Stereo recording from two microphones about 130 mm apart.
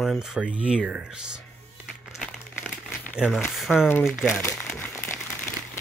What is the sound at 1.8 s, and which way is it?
Music, centre (ahead or behind).